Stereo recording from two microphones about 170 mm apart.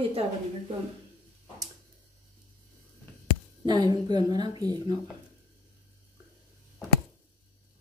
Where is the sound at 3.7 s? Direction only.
25° right (ahead or behind).